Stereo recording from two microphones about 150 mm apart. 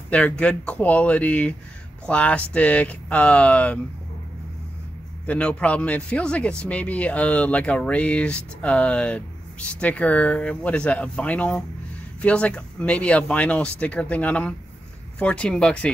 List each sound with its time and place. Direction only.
0.1 s speech: 10° left (ahead or behind)
5.2 s speech: 10° left (ahead or behind)